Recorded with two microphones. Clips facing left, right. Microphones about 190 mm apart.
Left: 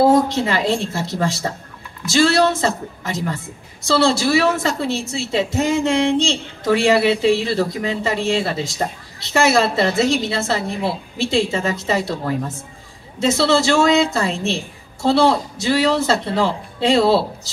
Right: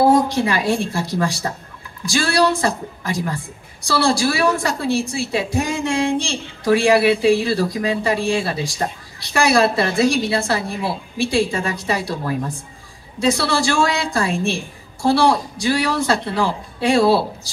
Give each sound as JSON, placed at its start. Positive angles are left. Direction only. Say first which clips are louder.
{"t": 0.1, "sound": "a woman's voice", "louder": "even", "side_deg": 20}